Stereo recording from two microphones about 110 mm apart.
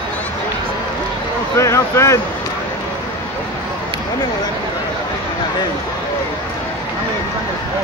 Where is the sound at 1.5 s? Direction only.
25° left (ahead or behind).